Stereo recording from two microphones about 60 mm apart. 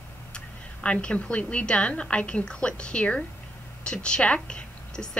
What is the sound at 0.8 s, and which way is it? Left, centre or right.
A woman's voice, centre.